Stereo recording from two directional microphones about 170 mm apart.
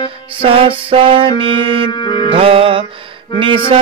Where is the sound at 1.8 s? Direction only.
30° left (ahead or behind).